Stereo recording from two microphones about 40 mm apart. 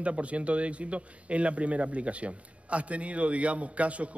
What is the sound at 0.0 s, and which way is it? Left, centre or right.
A man's voice, right.